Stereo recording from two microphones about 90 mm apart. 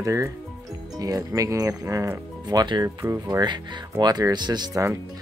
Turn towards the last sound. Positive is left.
turn(degrees=-40)  # may be behind; listen again after turning